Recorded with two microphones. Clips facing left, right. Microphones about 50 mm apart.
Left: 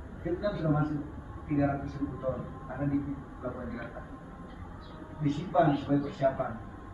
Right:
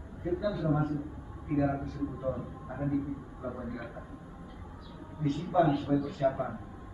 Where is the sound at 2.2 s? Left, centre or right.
Centre.